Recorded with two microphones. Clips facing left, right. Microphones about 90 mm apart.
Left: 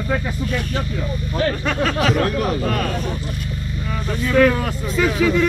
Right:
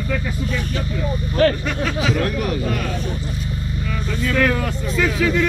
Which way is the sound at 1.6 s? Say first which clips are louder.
Left 3 dB; 50° left (ahead or behind).